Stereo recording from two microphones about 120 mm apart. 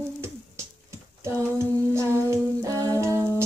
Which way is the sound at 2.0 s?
25° right (ahead or behind).